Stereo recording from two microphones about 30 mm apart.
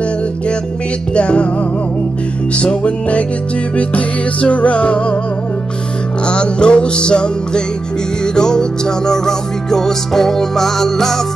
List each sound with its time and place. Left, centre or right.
1.1 s music: left
2.5 s music: left
6.2 s music: left; by 11.1 s centre